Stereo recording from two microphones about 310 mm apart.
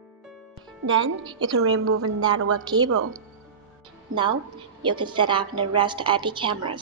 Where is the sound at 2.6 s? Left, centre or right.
Centre.